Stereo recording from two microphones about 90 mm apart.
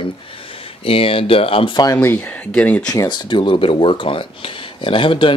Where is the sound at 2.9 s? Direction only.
45° left (ahead or behind).